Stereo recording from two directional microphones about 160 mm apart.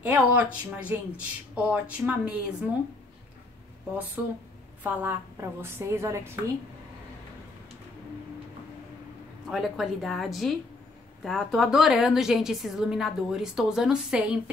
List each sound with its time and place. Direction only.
0.1 s speech: 10° right (ahead or behind)
4.2 s speech: 5° right (ahead or behind)
9.5 s a woman's voice: centre (ahead or behind)